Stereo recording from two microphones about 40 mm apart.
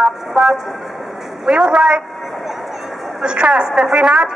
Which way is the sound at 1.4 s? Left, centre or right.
Centre.